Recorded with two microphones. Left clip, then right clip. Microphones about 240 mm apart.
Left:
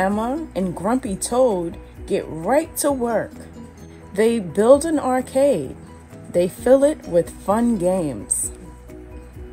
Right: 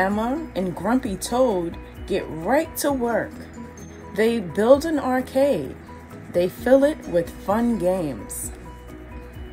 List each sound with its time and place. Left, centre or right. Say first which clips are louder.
0.0 s speech: left 1 dB; left